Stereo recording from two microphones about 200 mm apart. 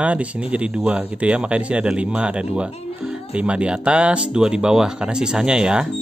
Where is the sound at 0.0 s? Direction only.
5° right (ahead or behind).